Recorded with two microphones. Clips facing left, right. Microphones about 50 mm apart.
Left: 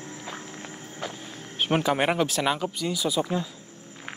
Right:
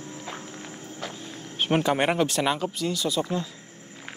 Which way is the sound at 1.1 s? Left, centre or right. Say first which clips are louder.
Right 1 dB; centre.